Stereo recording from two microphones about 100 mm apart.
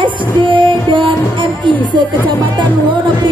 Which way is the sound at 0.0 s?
55° right (ahead or behind).